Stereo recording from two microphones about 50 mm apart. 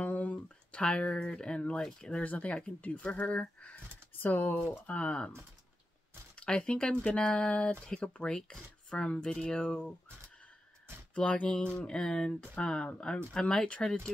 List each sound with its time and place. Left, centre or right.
0.0 s a sound: left
1.8 s speech: centre
4.2 s speech: left
4.8 s speech: left
6.4 s speech: centre
11.1 s speech: left